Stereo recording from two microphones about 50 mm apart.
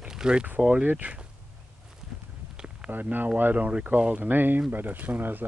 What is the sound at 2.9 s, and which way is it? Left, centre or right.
Speech, right.